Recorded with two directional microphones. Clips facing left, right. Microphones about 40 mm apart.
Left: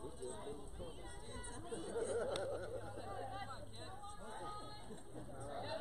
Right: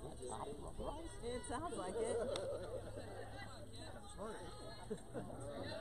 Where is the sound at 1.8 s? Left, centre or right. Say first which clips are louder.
Left 1 dB; right.